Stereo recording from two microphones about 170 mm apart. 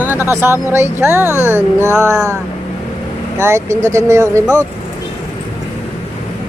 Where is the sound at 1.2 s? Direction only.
15° left (ahead or behind).